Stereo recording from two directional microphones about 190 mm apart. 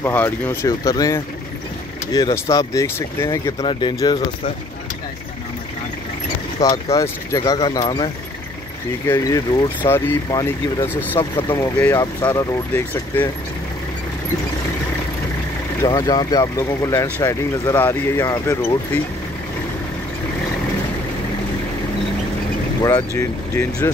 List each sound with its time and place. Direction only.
0.0 s speech: 10° left (ahead or behind)
6.6 s speech: 15° left (ahead or behind)
9.0 s speech: 10° left (ahead or behind)
15.8 s speech: 20° left (ahead or behind)
22.8 s speech: 15° left (ahead or behind)